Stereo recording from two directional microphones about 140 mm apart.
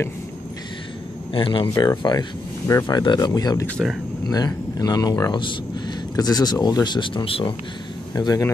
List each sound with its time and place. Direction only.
1.3 s speech: 35° left (ahead or behind)
8.1 s speech: 25° left (ahead or behind)